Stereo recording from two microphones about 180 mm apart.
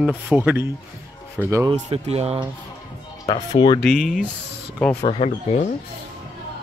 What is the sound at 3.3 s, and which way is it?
Speech, 25° left (ahead or behind).